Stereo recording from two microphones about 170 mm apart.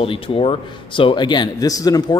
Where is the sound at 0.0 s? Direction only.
35° left (ahead or behind).